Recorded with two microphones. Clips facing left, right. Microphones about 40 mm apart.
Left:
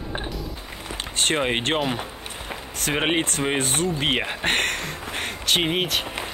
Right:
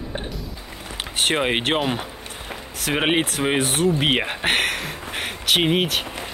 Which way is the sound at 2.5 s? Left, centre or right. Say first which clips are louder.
Right 1 dB; centre.